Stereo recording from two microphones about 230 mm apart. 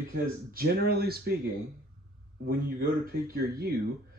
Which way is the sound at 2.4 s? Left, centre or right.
Right.